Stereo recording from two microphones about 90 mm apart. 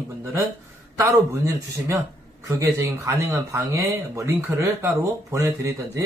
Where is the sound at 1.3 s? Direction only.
35° right (ahead or behind).